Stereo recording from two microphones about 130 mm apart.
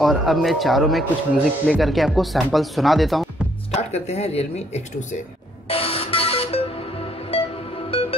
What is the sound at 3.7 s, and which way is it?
Speech, 55° left (ahead or behind).